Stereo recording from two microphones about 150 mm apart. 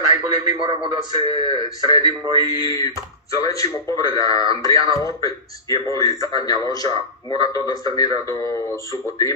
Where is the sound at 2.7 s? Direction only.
25° left (ahead or behind).